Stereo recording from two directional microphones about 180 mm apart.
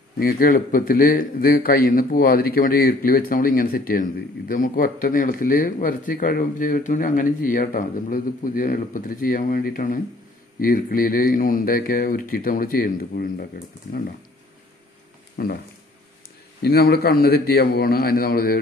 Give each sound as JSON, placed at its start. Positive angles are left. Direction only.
{"t": 0.2, "sound": "a man's voice", "side_deg": 50}
{"t": 15.3, "sound": "speech", "side_deg": 60}
{"t": 16.6, "sound": "a man's voice", "side_deg": 60}